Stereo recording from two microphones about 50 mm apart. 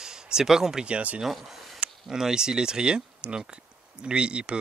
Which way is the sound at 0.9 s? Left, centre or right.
Right.